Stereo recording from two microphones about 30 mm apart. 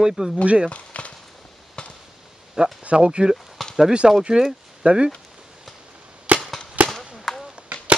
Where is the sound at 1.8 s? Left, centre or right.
Left.